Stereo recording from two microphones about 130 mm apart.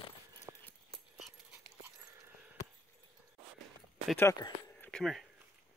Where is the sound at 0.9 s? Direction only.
Centre (ahead or behind).